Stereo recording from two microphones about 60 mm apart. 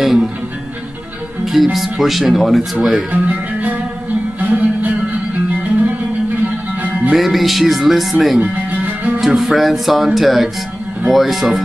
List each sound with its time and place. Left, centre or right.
0.0 s music: centre
1.4 s speech: centre
3.1 s speech: right
4.4 s music: right
7.1 s speech: centre
8.4 s music: right
9.2 s speech: centre